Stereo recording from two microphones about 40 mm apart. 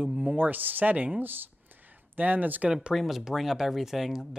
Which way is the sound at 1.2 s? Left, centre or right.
Right.